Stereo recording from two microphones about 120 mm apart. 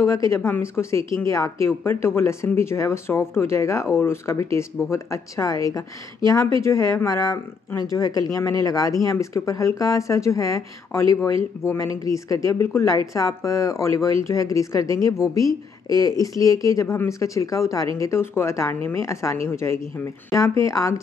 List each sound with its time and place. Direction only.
0.0 s speech: 25° left (ahead or behind)